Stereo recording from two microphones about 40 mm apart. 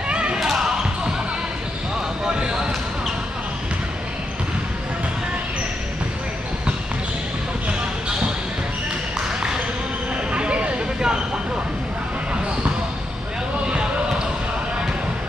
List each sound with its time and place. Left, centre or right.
0.1 s basketball bounce: right
2.2 s basketball bounce: centre
10.3 s a sound: right
13.7 s basketball bounce: right